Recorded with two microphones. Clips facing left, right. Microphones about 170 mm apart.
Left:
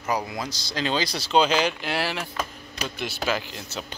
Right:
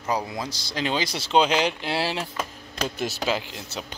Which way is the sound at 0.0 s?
25° right (ahead or behind).